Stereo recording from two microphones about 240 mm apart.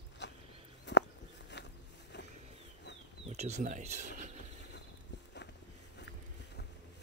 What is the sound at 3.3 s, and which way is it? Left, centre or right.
Speech, right.